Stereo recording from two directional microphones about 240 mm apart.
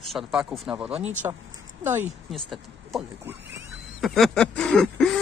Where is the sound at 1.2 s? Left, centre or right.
Centre.